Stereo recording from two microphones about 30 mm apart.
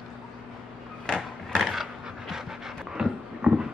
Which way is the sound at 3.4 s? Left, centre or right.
Right.